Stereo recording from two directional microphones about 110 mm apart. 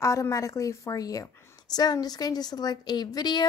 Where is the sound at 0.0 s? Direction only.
30° left (ahead or behind).